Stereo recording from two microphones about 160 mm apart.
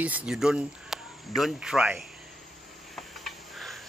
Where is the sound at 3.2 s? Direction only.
Centre (ahead or behind).